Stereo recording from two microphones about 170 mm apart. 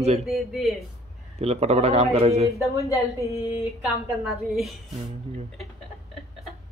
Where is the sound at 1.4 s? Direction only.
40° right (ahead or behind).